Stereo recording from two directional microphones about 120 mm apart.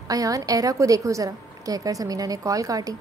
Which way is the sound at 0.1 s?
30° right (ahead or behind).